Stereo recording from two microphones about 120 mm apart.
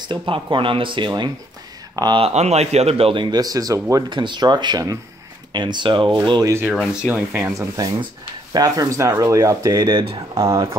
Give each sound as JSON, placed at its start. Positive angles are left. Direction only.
{"t": 0.0, "sound": "speech", "side_deg": -40}
{"t": 2.2, "sound": "speech", "side_deg": -65}
{"t": 3.3, "sound": "speech", "side_deg": -30}
{"t": 6.4, "sound": "speech", "side_deg": -20}
{"t": 7.1, "sound": "speech", "side_deg": -10}
{"t": 7.5, "sound": "speech", "side_deg": -30}